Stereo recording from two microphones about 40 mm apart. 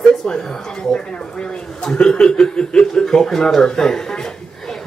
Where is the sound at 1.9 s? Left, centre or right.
Left.